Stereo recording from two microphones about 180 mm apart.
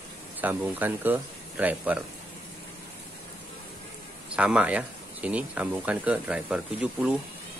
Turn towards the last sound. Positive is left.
turn(degrees=-5)  # may be behind; listen again after turning